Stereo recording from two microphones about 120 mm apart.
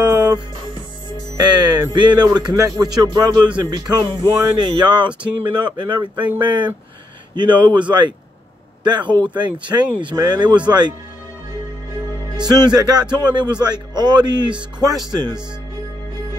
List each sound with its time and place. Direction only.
0.0 s music: 30° right (ahead or behind)
1.3 s speech: 35° right (ahead or behind)
8.8 s speech: 35° right (ahead or behind)
12.4 s speech: 35° right (ahead or behind)